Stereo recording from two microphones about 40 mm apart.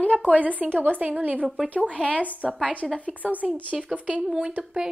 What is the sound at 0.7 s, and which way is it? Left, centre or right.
Speech, right.